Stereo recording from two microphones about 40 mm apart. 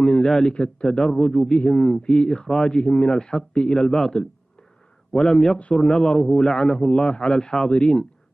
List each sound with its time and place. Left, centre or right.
0.0 s a man's voice: centre
5.1 s a man's voice: centre